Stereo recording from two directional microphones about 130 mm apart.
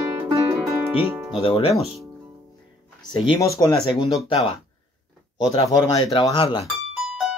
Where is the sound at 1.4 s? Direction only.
45° left (ahead or behind).